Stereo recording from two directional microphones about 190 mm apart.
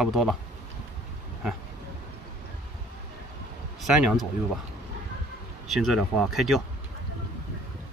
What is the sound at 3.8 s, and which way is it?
Speech, centre (ahead or behind).